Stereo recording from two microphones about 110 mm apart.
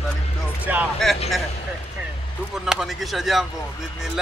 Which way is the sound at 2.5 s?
5° right (ahead or behind).